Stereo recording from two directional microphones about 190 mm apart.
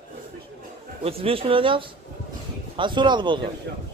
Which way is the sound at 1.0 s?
30° right (ahead or behind).